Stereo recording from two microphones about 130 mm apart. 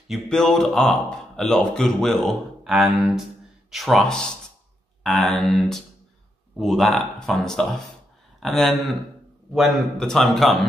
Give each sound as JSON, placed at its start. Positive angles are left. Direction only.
{"t": 0.1, "sound": "speech", "side_deg": 5}